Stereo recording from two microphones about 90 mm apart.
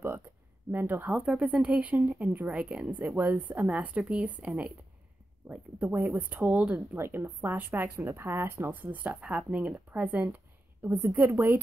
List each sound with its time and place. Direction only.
0.7 s speech: 20° right (ahead or behind)
7.0 s speech: 25° right (ahead or behind)
10.9 s a woman's voice: 35° right (ahead or behind)
11.1 s speech: 25° right (ahead or behind)